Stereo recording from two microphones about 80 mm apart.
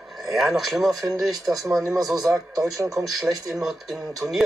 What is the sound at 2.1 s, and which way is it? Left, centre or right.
Speech, right.